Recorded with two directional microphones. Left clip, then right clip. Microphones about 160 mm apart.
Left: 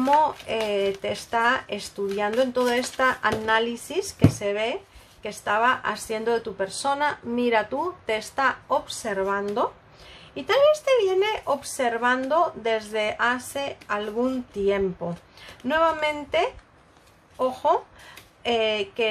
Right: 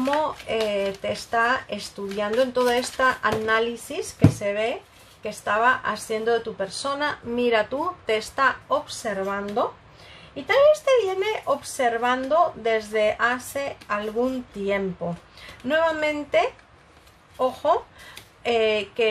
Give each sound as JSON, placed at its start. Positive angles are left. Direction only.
{"t": 0.0, "sound": "a woman's voice", "side_deg": 15}
{"t": 15.4, "sound": "speech", "side_deg": 20}